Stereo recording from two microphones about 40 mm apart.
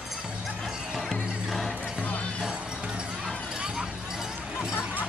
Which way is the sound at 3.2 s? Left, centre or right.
Right.